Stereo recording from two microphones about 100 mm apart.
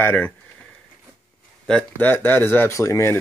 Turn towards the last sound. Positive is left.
turn(degrees=30)  # may be behind; listen again after turning